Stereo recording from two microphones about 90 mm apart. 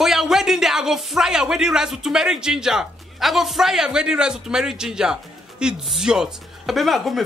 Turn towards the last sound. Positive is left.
turn(degrees=0)  # may be behind; listen again after turning